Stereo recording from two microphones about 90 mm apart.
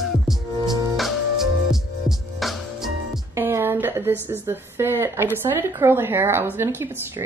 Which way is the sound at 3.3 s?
25° right (ahead or behind).